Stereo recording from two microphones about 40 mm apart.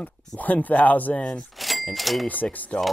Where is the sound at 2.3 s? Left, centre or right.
Left.